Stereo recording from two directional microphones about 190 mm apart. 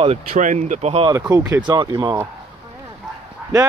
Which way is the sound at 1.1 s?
10° right (ahead or behind).